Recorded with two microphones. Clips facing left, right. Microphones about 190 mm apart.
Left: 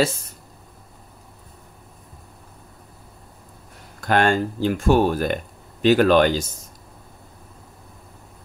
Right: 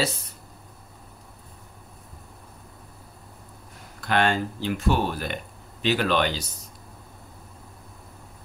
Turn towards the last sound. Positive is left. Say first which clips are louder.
# left 8 dB
turn(degrees=45)  # may be behind; listen again after turning